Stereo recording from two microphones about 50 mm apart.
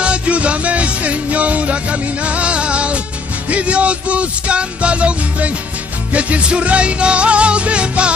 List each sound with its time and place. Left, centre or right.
0.0 s music: right